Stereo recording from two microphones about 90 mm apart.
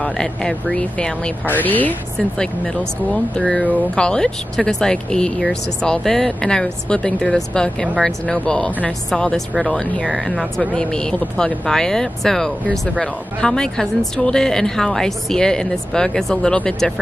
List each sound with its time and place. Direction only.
0.0 s speech: 10° left (ahead or behind)
2.1 s speech: 5° left (ahead or behind)